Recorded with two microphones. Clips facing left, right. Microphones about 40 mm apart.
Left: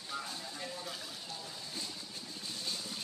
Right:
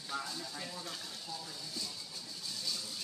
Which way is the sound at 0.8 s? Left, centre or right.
Centre.